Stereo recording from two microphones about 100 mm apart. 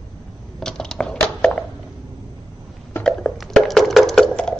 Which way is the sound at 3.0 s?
5° left (ahead or behind).